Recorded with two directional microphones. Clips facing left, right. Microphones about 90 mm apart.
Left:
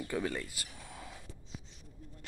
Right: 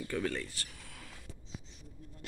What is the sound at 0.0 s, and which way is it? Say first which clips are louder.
Speech: even; 15° left (ahead or behind).